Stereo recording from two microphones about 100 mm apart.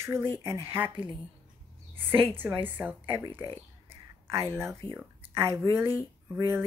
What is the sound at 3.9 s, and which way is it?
Whispering, 30° right (ahead or behind).